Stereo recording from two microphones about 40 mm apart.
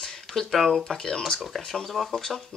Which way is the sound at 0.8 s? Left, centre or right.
Centre.